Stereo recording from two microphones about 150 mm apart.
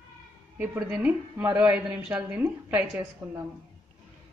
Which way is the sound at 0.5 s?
15° right (ahead or behind).